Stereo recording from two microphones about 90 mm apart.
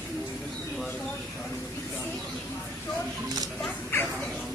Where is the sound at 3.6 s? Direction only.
20° left (ahead or behind).